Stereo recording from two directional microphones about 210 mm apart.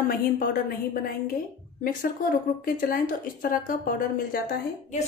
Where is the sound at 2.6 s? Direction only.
40° left (ahead or behind).